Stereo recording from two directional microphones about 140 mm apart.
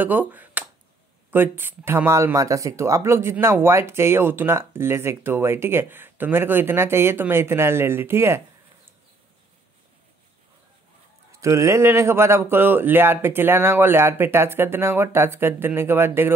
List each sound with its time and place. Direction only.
0.0 s speech: 10° right (ahead or behind)
11.4 s speech: 20° right (ahead or behind)